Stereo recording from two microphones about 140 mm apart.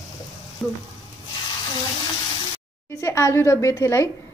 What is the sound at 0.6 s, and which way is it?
Speech, centre (ahead or behind).